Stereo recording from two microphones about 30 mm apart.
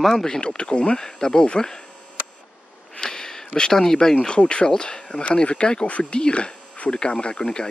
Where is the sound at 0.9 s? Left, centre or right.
Left.